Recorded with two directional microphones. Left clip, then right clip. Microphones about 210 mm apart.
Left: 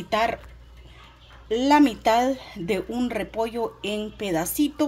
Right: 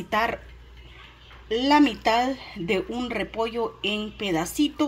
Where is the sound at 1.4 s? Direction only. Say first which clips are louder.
Left 1 dB; 5° left (ahead or behind).